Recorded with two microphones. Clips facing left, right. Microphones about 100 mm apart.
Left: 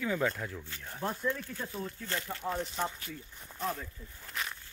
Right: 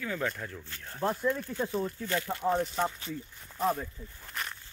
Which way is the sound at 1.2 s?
5° right (ahead or behind).